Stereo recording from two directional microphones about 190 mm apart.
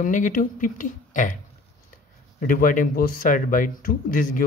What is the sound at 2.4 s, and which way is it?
Speech, 45° left (ahead or behind).